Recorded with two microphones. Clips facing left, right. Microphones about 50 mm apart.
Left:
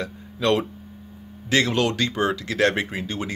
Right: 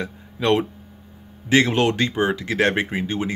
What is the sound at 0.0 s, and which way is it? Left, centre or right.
Speech, right.